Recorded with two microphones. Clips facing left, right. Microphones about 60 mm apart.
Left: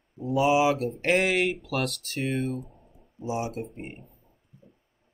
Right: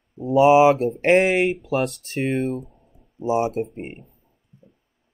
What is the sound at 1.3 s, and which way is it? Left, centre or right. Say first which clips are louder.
Speech: right 5 dB; centre.